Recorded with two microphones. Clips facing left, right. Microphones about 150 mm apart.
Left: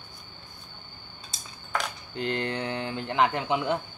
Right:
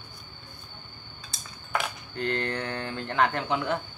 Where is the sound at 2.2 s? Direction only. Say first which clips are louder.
Even; 20° left (ahead or behind).